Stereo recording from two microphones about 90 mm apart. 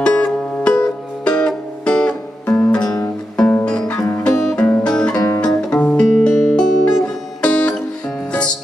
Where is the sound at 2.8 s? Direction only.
35° left (ahead or behind).